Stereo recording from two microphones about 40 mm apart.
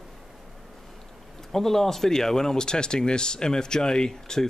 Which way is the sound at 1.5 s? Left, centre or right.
Centre.